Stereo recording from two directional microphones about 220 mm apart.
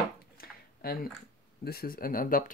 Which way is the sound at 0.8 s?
45° left (ahead or behind).